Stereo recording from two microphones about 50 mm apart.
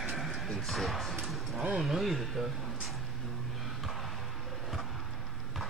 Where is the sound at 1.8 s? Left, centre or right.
Centre.